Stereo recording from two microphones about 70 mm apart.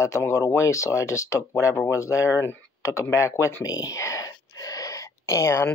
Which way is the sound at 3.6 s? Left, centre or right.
Left.